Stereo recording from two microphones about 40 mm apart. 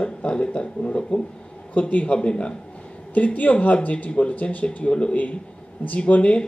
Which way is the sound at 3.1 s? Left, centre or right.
Left.